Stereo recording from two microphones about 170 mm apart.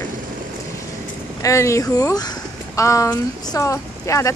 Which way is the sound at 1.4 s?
15° left (ahead or behind).